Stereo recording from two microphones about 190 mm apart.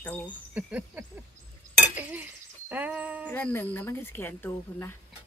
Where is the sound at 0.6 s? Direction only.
10° right (ahead or behind).